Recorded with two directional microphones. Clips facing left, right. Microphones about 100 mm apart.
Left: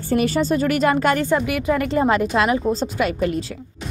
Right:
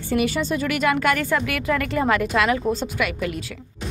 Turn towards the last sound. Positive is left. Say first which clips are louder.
# left 4 dB
turn(degrees=35)  # may be behind; listen again after turning